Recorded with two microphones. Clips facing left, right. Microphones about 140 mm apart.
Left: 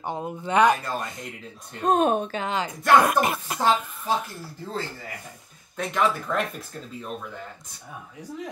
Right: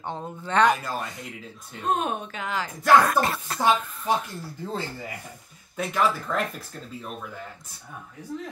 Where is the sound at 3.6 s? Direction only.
10° right (ahead or behind).